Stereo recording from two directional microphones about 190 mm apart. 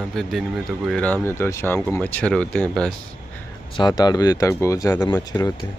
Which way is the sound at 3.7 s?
20° left (ahead or behind).